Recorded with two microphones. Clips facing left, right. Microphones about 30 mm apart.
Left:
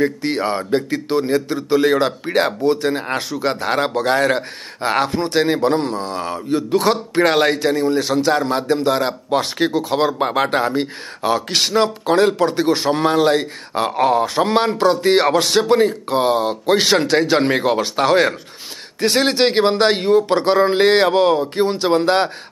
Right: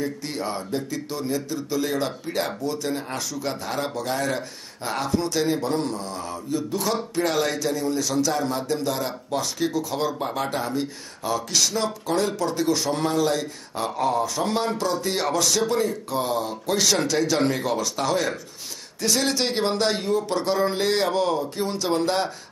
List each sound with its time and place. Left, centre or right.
0.0 s a man's voice: left